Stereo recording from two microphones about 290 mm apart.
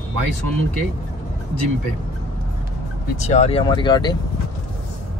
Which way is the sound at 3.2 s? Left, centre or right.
Left.